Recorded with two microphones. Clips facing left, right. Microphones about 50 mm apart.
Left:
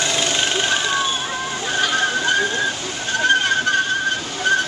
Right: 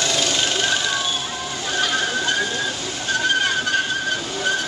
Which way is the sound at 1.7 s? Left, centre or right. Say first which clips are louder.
Left 2 dB; centre.